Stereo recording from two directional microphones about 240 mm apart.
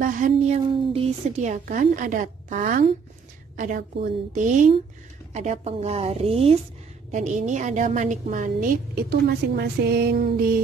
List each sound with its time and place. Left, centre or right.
0.0 s a woman's voice: right